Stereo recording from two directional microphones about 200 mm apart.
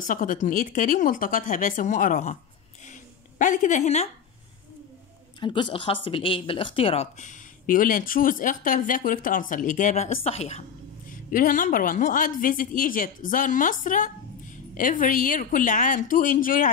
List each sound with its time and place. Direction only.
0.0 s speech: 40° left (ahead or behind)
2.9 s a sound: 40° left (ahead or behind)
5.4 s speech: 25° left (ahead or behind)
11.1 s a woman's voice: 45° left (ahead or behind)